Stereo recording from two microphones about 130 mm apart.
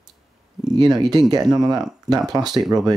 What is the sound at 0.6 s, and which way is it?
Speech, 30° right (ahead or behind).